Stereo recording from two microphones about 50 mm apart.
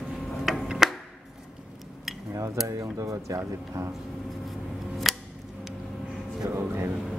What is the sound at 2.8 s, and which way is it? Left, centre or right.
Music, right.